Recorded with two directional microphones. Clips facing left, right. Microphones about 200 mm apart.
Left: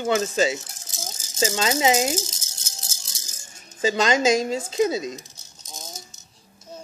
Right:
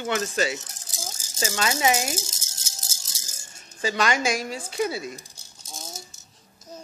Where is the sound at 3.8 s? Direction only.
20° left (ahead or behind).